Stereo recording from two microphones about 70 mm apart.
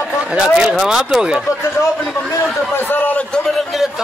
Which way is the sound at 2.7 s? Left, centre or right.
Left.